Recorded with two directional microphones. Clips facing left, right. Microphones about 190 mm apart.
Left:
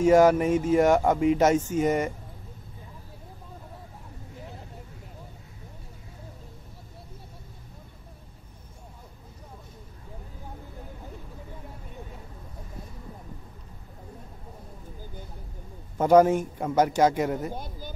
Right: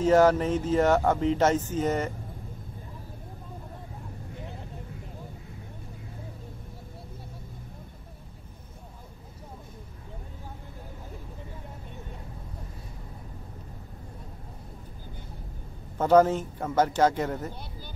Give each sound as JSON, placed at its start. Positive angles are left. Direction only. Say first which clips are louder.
{"t": 0.0, "sound": "a man's voice", "louder": "left 2 dB", "side_deg": 10}
{"t": 16.0, "sound": "a man's voice", "louder": "left 2 dB", "side_deg": 10}
{"t": 17.6, "sound": "a sound", "louder": "left 5 dB", "side_deg": 45}